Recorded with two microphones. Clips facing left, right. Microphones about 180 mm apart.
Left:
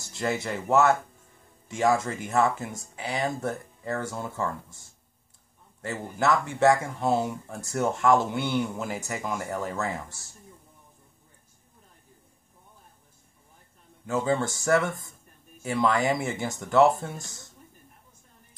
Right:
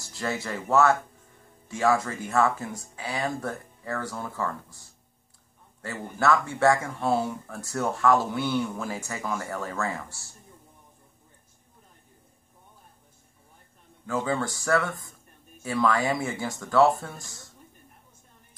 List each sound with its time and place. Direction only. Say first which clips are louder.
0.1 s speech: left 2 dB; 20° left (ahead or behind)
14.0 s speech: left 2 dB; 25° left (ahead or behind)